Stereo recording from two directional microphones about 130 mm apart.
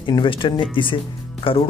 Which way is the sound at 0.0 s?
40° left (ahead or behind).